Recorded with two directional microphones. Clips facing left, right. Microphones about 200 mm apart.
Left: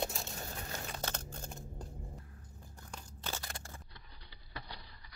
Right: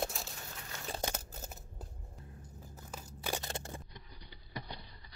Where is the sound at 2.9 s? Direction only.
10° right (ahead or behind).